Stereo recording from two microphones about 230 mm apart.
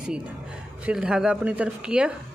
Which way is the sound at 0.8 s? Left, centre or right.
Centre.